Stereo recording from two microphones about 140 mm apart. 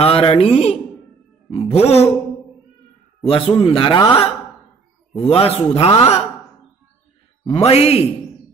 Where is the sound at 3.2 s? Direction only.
40° left (ahead or behind).